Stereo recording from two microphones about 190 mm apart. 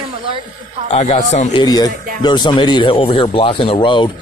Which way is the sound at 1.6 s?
20° left (ahead or behind).